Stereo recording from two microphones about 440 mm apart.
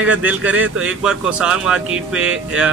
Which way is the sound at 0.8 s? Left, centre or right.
Centre.